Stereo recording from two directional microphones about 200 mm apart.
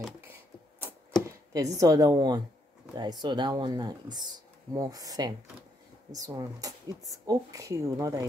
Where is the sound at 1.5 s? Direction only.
15° right (ahead or behind).